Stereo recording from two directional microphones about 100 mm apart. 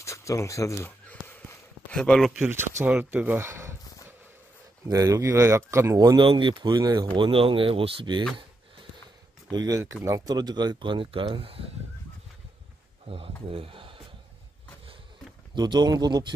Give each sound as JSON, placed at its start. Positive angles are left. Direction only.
{"t": 0.0, "sound": "speech", "side_deg": 30}
{"t": 0.8, "sound": "a sound", "side_deg": 20}
{"t": 2.0, "sound": "speech", "side_deg": 5}
{"t": 2.9, "sound": "speech", "side_deg": -10}
{"t": 4.8, "sound": "speech", "side_deg": -35}
{"t": 6.1, "sound": "speech", "side_deg": -55}
{"t": 9.5, "sound": "speech", "side_deg": -40}
{"t": 10.3, "sound": "speech", "side_deg": -45}
{"t": 13.0, "sound": "speech", "side_deg": -65}
{"t": 15.5, "sound": "speech", "side_deg": -45}